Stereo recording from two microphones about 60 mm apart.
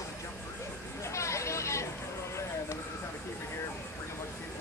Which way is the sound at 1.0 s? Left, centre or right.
Left.